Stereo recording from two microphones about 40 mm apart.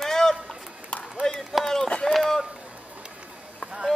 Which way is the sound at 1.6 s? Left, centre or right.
Centre.